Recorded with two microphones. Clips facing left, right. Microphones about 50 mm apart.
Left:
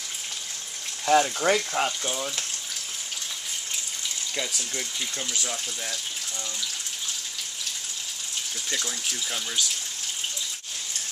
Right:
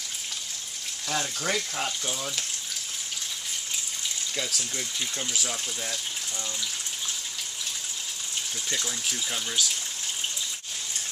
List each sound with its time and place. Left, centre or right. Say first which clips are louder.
1.0 s frying: left 9 dB; left; by 2.4 s centre
4.4 s speech: left 1 dB; centre
8.6 s speech: left 1 dB; centre